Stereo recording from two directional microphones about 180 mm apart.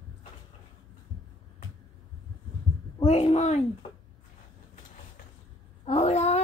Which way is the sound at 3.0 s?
35° left (ahead or behind).